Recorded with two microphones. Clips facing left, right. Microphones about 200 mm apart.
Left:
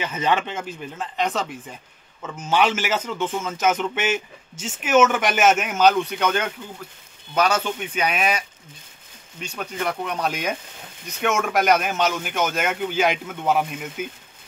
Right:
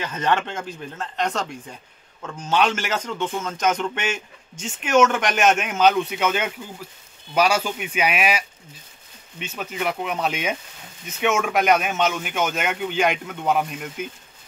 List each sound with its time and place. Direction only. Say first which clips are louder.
0.0 s a man's voice: even; 10° left (ahead or behind)